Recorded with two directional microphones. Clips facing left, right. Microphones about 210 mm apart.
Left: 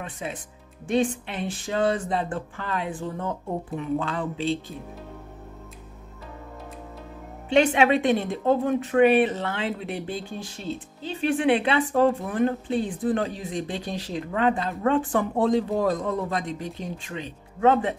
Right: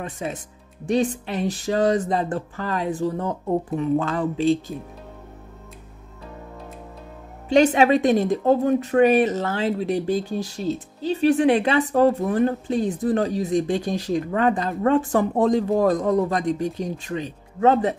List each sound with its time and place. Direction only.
0.0 s speech: 40° right (ahead or behind)
7.4 s speech: 40° right (ahead or behind)